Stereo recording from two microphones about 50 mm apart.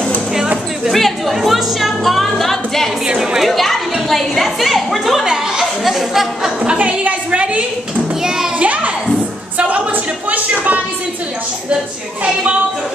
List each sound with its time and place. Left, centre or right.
0.8 s music: centre
3.2 s chatter: centre
3.5 s a woman's voice: centre
5.2 s speech: centre
6.8 s a woman's voice: right
8.5 s a sound: right
9.6 s music: right
10.3 s a sound: right